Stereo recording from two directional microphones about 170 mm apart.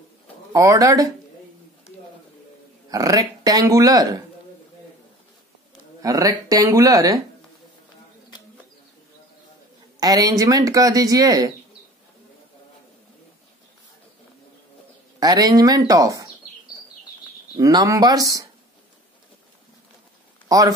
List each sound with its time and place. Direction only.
0.5 s speech: 20° right (ahead or behind)
2.9 s speech: 20° right (ahead or behind)
6.0 s speech: 20° right (ahead or behind)
9.9 s speech: 20° right (ahead or behind)
15.1 s speech: 20° right (ahead or behind)
17.6 s speech: 20° right (ahead or behind)
20.4 s speech: 20° right (ahead or behind)